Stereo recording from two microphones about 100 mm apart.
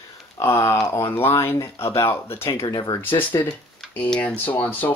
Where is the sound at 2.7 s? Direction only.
45° left (ahead or behind).